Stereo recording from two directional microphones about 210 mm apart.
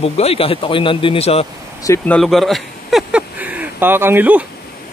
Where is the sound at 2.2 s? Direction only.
Centre (ahead or behind).